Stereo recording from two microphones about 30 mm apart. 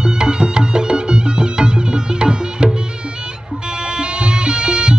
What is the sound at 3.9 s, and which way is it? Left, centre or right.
Music, right.